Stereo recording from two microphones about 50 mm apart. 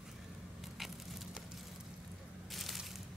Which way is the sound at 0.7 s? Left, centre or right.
Centre.